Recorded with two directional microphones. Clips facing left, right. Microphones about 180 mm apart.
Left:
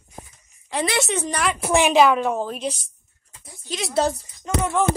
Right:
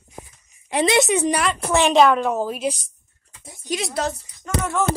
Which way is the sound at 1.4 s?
10° left (ahead or behind).